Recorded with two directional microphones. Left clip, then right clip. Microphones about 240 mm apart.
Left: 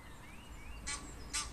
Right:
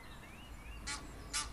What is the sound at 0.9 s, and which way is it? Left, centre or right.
Goose, right.